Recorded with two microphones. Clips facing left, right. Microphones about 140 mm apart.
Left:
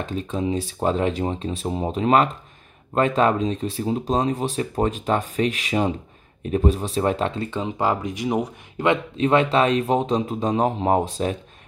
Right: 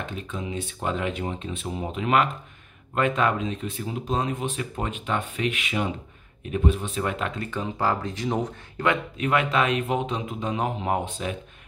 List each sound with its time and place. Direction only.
0.0 s speech: 35° left (ahead or behind); by 8.8 s 10° left (ahead or behind)
8.8 s speech: 25° left (ahead or behind)